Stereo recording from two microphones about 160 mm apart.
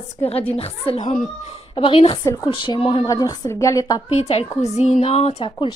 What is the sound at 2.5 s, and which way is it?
Speech, 30° left (ahead or behind).